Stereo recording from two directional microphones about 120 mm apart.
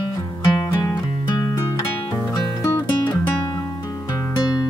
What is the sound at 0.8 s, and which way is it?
Music, 30° left (ahead or behind).